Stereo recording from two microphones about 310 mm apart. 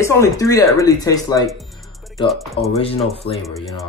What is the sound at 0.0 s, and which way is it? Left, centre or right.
Speech, centre.